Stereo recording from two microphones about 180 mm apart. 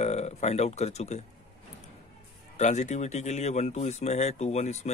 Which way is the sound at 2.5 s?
40° left (ahead or behind).